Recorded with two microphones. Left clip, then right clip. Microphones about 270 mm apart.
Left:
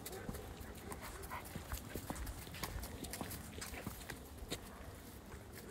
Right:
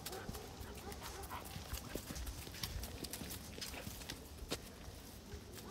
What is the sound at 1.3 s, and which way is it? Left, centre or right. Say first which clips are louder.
Clip-clop: even; centre.